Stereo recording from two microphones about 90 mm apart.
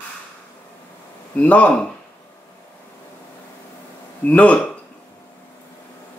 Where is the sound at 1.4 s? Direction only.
15° left (ahead or behind).